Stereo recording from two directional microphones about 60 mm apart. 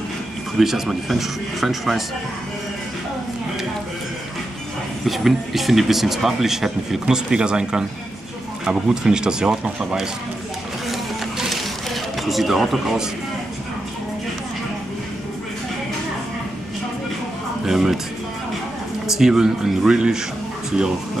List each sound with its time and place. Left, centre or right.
0.6 s speech: centre
5.0 s speech: centre
10.9 s a sound: centre
17.6 s speech: centre
19.0 s speech: centre